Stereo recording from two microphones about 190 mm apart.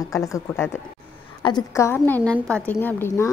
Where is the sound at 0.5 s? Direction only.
10° left (ahead or behind).